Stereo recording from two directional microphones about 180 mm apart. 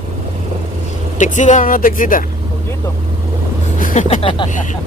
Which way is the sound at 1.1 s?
40° left (ahead or behind).